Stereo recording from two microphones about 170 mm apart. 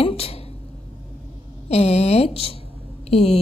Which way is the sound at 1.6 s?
40° left (ahead or behind).